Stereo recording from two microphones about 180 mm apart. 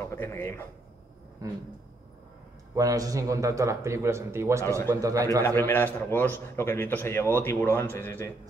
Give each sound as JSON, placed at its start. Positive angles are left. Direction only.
{"t": 0.0, "sound": "speech", "side_deg": 15}
{"t": 1.4, "sound": "a sound", "side_deg": -20}
{"t": 2.7, "sound": "speech", "side_deg": -20}
{"t": 5.6, "sound": "speech", "side_deg": 10}